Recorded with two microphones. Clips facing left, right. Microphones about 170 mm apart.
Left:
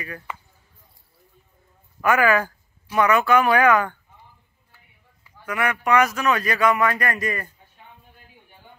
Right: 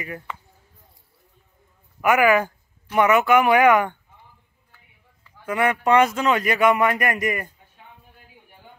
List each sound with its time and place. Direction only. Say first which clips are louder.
0.3 s a sound: even; centre (ahead or behind)
2.0 s speech: right 2 dB; 20° right (ahead or behind)
5.4 s a man's voice: right 3 dB; 25° right (ahead or behind)